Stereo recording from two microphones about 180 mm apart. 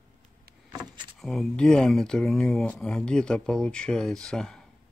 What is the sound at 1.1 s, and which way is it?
Speech, 5° left (ahead or behind).